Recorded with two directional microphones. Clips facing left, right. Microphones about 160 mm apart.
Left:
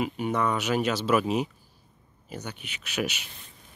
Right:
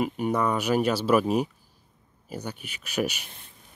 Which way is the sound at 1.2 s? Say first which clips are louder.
Right 2 dB; 40° right (ahead or behind).